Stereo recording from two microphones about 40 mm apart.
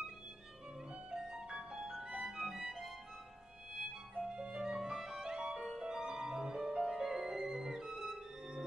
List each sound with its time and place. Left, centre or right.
1.1 s music: centre
4.2 s music: right
6.9 s music: centre